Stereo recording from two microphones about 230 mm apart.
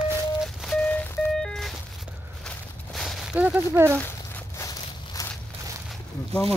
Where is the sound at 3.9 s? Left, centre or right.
Centre.